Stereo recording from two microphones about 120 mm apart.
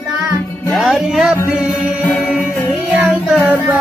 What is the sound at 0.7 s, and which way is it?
Music, centre (ahead or behind).